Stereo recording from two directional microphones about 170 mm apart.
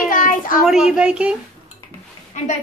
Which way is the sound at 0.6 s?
5° right (ahead or behind).